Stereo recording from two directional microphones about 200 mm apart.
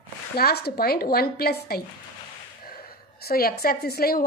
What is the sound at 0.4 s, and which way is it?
A woman's voice, 50° left (ahead or behind).